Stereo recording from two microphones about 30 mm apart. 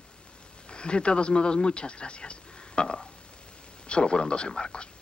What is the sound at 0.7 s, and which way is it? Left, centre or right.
Speech, left.